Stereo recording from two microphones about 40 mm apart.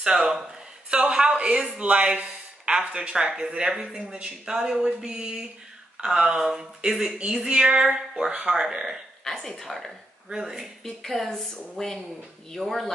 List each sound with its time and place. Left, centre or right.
0.0 s a woman's voice: right
9.2 s speech: centre
9.8 s speech: centre
10.8 s speech: centre